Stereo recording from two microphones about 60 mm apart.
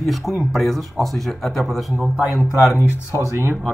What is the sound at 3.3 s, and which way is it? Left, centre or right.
Speech, right.